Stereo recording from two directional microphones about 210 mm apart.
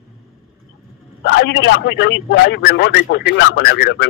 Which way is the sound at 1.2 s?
55° left (ahead or behind).